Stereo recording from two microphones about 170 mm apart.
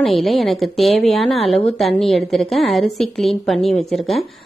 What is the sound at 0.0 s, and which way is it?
A woman's voice, centre (ahead or behind).